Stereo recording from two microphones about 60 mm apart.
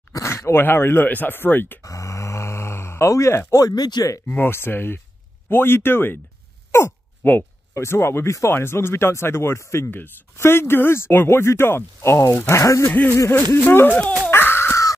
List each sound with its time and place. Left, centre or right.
0.1 s speech: left
1.8 s a sound: left
3.6 s speech: left
4.3 s speech: left
7.2 s speech: left
7.7 s speech: left
9.8 s speech: left
12.9 s speech: left
14.3 s wail: left